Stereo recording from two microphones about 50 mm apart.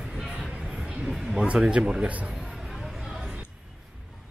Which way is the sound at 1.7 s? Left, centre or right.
Right.